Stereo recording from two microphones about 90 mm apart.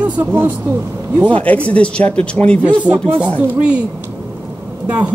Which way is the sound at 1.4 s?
15° left (ahead or behind).